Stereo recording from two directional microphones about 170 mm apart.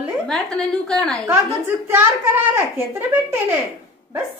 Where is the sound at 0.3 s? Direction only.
5° left (ahead or behind).